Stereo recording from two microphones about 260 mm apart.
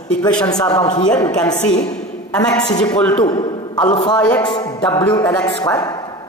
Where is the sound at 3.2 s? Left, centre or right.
Centre.